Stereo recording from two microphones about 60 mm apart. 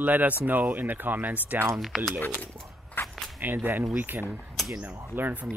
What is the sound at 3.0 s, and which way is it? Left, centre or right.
Walk, left.